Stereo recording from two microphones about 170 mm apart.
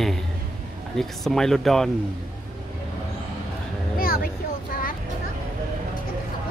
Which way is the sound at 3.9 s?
60° left (ahead or behind).